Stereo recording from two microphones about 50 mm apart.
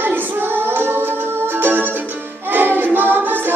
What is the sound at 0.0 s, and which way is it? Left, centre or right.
Child singing, right.